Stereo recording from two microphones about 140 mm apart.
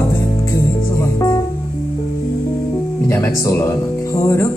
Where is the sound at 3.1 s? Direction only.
20° left (ahead or behind).